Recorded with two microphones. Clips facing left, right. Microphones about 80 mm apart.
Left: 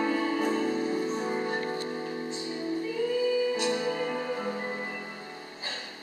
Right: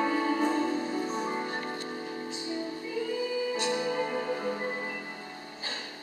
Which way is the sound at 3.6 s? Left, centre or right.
Centre.